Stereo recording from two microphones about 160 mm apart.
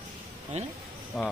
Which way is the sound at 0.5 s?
45° right (ahead or behind).